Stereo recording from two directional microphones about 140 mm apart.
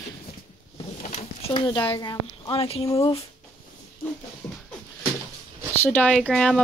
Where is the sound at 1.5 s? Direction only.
35° left (ahead or behind).